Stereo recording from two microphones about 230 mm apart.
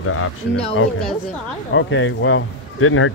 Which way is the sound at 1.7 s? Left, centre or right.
Left.